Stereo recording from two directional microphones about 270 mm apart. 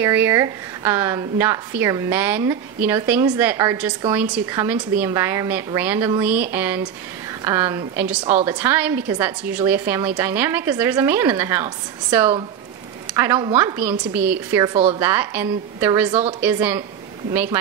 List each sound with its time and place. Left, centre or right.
0.0 s a woman's voice: centre
15.0 s a woman's voice: centre
16.1 s speech: right
16.3 s a woman's voice: centre